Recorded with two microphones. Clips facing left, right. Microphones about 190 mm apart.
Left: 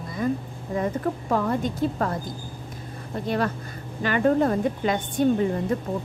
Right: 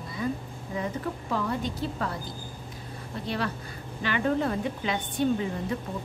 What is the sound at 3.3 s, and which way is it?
Speech, 45° left (ahead or behind).